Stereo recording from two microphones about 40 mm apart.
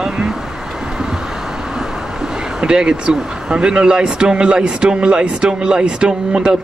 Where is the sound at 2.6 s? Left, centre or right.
Right.